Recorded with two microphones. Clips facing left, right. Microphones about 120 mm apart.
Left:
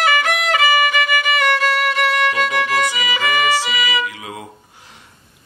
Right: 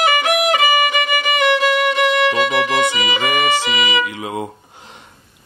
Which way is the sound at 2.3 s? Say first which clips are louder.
Right 2 dB; 20° right (ahead or behind).